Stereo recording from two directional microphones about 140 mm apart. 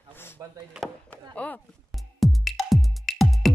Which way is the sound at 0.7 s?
5° right (ahead or behind).